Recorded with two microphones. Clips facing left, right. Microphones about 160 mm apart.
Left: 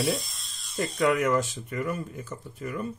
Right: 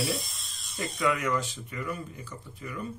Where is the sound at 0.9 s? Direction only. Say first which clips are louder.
Left 5 dB; 50° left (ahead or behind).